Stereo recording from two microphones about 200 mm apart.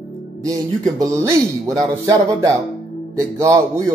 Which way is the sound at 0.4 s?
15° right (ahead or behind).